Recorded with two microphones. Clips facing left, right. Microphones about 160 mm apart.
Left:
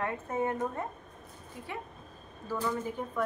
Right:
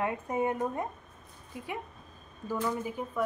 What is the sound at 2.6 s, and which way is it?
Speech, 10° right (ahead or behind).